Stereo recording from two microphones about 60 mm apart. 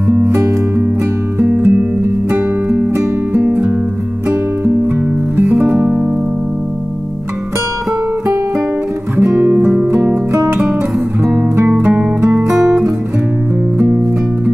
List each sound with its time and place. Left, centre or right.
1.4 s music: right
5.3 s music: right
9.3 s music: centre
11.7 s music: right
12.5 s guitar: centre